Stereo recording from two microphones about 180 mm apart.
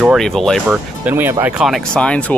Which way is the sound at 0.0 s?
Centre (ahead or behind).